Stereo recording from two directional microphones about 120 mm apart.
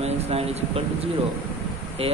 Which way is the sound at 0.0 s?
60° right (ahead or behind).